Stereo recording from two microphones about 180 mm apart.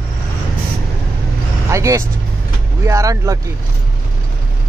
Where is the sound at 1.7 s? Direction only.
15° right (ahead or behind).